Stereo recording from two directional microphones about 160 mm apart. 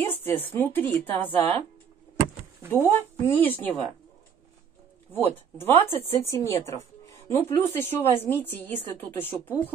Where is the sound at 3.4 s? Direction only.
10° left (ahead or behind).